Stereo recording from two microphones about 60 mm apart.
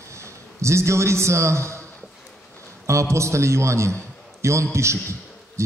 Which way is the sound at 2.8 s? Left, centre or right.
Right.